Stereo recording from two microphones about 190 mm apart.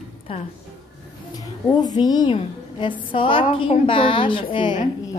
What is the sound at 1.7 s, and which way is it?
A woman's voice, 20° left (ahead or behind).